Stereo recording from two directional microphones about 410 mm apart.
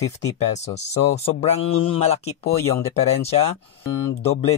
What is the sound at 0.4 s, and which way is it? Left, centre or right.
Speech, centre.